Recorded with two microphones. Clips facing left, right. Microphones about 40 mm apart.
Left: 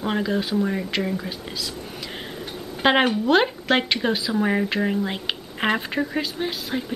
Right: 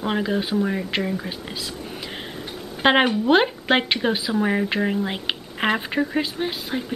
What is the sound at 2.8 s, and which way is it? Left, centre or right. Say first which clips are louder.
Speech: right 1 dB; centre.